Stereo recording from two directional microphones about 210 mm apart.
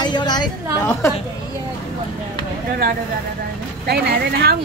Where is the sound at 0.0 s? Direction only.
20° left (ahead or behind).